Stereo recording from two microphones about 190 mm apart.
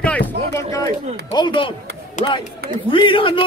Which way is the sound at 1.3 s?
25° left (ahead or behind).